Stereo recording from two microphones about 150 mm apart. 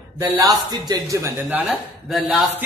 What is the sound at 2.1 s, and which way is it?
Speech, centre (ahead or behind).